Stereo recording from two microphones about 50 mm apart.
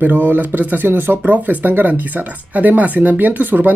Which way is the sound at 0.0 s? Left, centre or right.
Right.